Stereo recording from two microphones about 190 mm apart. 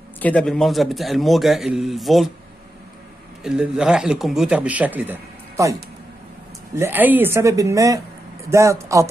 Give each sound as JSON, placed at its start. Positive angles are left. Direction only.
{"t": 0.2, "sound": "a man's voice", "side_deg": 5}
{"t": 3.4, "sound": "a man's voice", "side_deg": -5}